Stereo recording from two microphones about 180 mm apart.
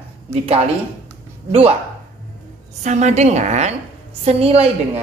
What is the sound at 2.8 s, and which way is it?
Speech, 40° right (ahead or behind).